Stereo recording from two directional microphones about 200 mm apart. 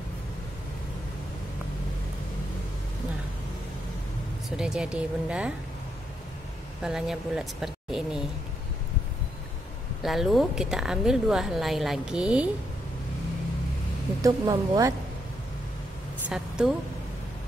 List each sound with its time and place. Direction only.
4.6 s a woman's voice: 5° right (ahead or behind)
6.8 s speech: centre (ahead or behind)
10.0 s a woman's voice: centre (ahead or behind)
14.2 s speech: 20° right (ahead or behind)
16.3 s a woman's voice: 5° right (ahead or behind)